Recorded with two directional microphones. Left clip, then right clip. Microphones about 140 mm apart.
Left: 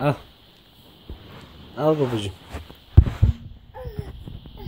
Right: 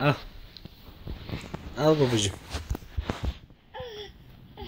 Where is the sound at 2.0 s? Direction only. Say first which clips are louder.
Even; 5° right (ahead or behind).